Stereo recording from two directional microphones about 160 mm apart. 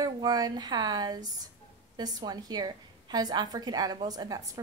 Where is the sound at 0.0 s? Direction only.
25° right (ahead or behind).